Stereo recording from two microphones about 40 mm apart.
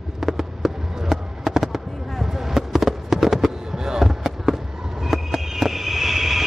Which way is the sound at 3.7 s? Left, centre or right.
Centre.